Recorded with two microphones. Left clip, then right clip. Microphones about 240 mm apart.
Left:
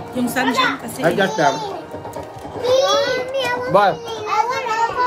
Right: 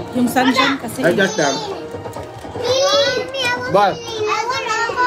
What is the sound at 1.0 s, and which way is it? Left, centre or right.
Speech, left.